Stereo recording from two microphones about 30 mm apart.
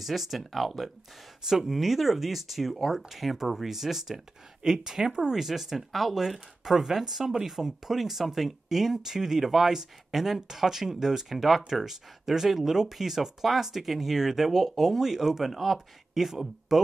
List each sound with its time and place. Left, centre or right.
0.0 s speech: centre
1.4 s speech: centre
1.7 s speech: centre; by 5.3 s right
5.3 s speech: centre